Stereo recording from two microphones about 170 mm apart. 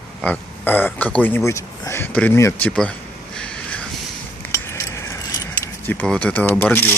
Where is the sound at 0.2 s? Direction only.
10° left (ahead or behind).